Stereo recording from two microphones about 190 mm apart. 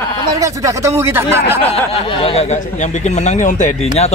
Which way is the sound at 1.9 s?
30° left (ahead or behind).